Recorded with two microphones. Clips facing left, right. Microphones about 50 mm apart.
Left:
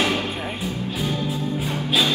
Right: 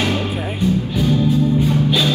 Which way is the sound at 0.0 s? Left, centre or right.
Centre.